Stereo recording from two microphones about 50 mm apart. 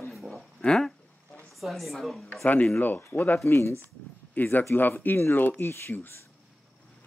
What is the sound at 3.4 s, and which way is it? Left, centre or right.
Speech, left.